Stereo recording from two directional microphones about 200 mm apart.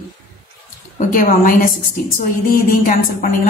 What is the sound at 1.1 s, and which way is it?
Speech, 45° left (ahead or behind).